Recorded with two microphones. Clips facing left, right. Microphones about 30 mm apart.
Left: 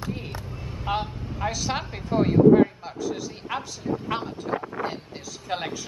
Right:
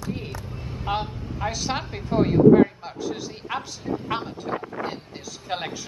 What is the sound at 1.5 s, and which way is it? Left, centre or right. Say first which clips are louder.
Speech: right 1 dB; centre.